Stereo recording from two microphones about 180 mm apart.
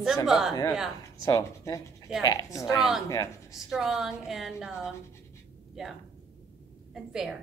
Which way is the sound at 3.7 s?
5° right (ahead or behind).